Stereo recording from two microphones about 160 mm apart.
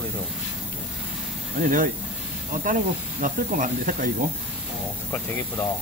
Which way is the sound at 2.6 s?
55° right (ahead or behind).